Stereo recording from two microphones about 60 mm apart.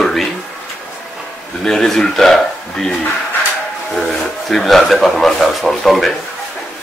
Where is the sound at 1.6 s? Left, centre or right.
Centre.